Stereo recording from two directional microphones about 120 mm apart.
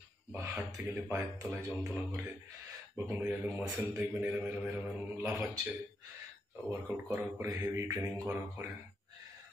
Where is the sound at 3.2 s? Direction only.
20° right (ahead or behind).